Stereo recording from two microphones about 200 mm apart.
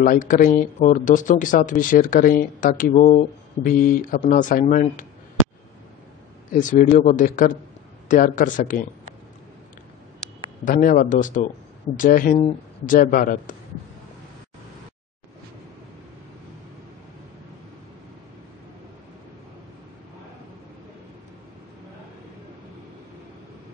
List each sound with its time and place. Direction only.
0.0 s speech: 45° left (ahead or behind)
6.5 s speech: 40° left (ahead or behind)
10.6 s speech: 45° left (ahead or behind)